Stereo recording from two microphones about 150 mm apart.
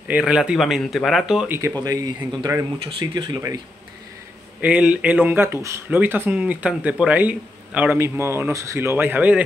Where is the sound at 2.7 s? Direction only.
30° right (ahead or behind).